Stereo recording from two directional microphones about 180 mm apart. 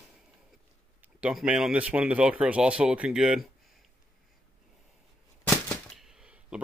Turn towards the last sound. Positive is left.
turn(degrees=-5)  # may be behind; listen again after turning